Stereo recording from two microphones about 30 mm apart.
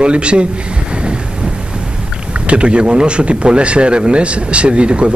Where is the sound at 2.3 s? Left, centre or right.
Right.